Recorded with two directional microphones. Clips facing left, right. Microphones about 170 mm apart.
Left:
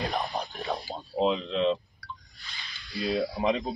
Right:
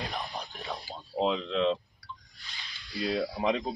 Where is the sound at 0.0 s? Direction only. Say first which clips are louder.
Left 6 dB; 70° left (ahead or behind); by 1.0 s 50° left (ahead or behind).